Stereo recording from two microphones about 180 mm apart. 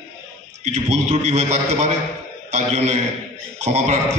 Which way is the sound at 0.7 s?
40° right (ahead or behind).